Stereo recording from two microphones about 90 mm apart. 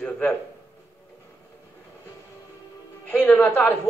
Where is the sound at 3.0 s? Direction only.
20° left (ahead or behind).